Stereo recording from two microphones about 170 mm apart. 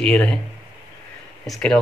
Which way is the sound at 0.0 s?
5° left (ahead or behind).